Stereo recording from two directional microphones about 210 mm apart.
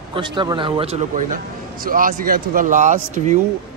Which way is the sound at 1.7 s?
40° right (ahead or behind).